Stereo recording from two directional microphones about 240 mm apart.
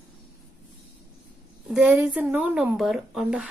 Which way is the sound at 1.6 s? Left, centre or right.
Centre.